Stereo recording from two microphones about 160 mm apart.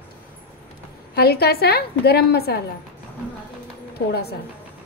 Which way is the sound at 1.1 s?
80° left.